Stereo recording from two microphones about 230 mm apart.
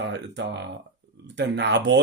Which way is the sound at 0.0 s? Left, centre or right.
Right.